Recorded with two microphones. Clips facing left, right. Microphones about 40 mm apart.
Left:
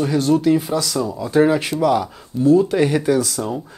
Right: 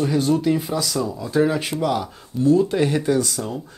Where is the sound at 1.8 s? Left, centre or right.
Centre.